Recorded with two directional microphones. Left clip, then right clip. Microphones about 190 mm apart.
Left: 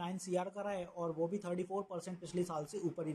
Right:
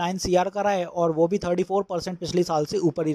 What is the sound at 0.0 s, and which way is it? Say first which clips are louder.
Speech: right 17 dB; 40° right (ahead or behind).